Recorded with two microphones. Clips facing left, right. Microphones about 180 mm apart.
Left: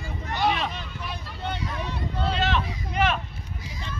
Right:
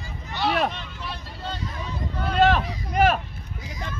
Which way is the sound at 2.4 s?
50° right (ahead or behind).